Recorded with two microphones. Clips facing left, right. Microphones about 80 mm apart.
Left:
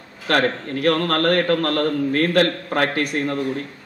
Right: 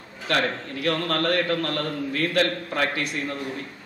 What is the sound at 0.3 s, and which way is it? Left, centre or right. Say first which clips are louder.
Speech: left 5 dB; left.